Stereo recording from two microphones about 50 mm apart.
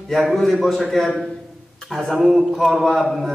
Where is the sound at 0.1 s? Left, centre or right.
Centre.